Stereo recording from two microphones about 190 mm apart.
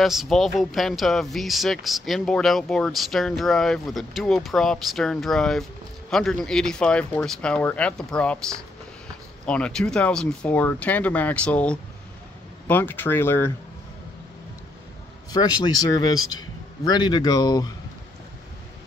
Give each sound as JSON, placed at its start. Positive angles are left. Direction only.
{"t": 0.0, "sound": "speech", "side_deg": 0}
{"t": 15.3, "sound": "a man's voice", "side_deg": 20}